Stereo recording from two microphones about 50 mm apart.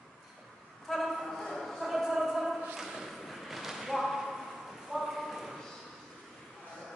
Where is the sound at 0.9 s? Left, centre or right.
Centre.